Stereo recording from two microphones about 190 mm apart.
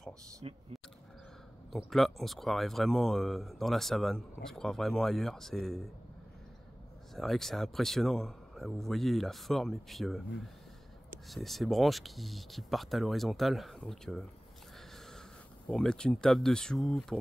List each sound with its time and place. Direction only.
0.4 s speech: 30° right (ahead or behind)
1.7 s speech: centre (ahead or behind)
7.2 s speech: centre (ahead or behind)
15.7 s speech: 5° left (ahead or behind)